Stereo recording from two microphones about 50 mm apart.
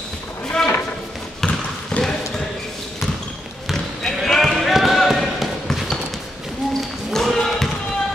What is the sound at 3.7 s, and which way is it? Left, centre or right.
Basketball bounce, centre.